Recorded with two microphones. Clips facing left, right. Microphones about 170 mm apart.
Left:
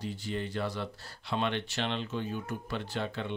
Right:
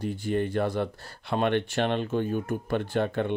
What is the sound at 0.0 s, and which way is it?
Speech, 50° right (ahead or behind).